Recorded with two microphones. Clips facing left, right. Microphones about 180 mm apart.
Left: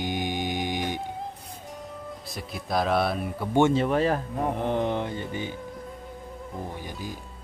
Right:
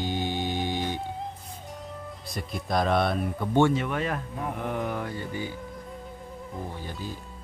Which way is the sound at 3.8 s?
35° left (ahead or behind).